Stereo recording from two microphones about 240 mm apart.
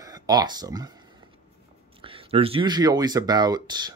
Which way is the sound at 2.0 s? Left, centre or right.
Right.